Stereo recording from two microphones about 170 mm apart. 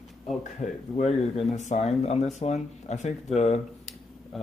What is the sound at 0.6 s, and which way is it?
Speech, 40° left (ahead or behind).